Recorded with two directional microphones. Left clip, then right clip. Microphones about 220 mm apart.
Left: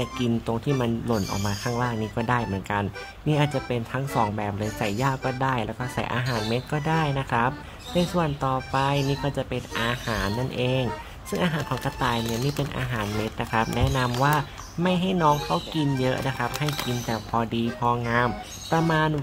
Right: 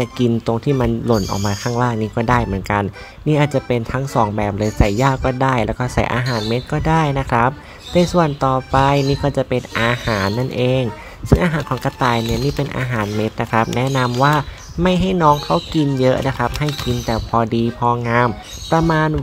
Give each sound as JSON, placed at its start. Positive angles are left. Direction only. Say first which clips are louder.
{"t": 0.0, "sound": "speech", "louder": "right 9 dB", "side_deg": -25}